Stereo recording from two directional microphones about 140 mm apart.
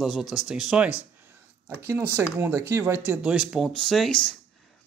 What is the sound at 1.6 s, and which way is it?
Speech, 15° right (ahead or behind).